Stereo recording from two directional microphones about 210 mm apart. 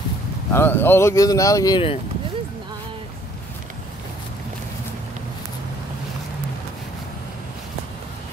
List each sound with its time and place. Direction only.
0.5 s speech: 10° left (ahead or behind)